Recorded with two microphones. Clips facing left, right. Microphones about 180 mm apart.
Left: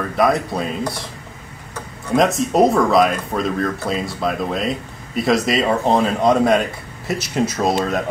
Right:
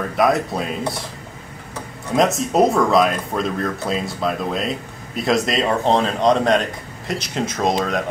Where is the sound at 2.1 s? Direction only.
Centre (ahead or behind).